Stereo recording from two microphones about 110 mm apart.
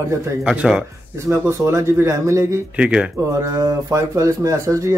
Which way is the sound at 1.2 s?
25° right (ahead or behind).